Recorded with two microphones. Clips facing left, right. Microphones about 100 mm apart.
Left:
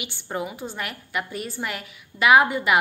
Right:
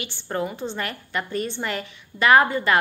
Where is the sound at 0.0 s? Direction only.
15° left (ahead or behind).